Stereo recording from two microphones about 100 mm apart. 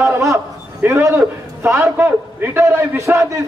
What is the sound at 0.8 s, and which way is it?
A man's voice, 20° right (ahead or behind).